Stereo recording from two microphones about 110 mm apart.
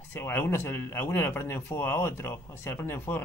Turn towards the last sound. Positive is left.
turn(degrees=20)  # may be behind; listen again after turning